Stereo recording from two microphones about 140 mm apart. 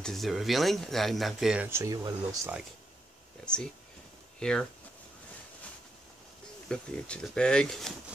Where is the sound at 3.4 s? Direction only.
5° left (ahead or behind).